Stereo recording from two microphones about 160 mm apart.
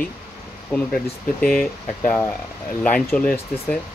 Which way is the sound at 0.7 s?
5° left (ahead or behind).